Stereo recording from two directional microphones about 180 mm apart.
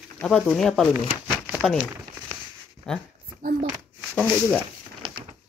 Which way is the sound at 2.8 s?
5° left (ahead or behind).